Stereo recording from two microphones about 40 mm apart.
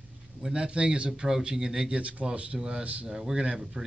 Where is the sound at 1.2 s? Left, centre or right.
Centre.